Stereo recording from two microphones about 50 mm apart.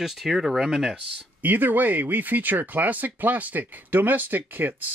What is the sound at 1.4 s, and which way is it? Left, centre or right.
Speech, right.